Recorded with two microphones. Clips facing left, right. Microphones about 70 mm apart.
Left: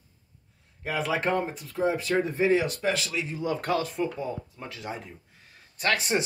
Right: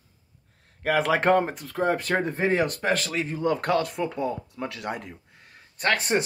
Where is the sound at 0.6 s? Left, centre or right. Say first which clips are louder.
Right 6 dB; right.